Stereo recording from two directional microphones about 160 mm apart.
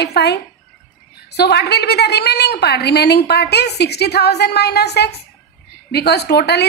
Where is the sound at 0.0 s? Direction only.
90° left.